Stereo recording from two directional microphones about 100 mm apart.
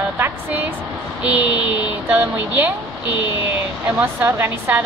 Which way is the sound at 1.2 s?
15° right (ahead or behind).